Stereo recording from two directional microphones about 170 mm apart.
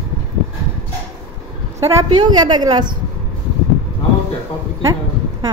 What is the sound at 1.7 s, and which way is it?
A woman's voice, 20° right (ahead or behind).